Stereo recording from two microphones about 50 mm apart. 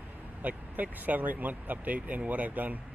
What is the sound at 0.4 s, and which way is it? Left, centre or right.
Speech, right.